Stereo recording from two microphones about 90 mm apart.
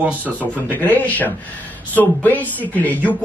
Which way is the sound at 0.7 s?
20° left (ahead or behind).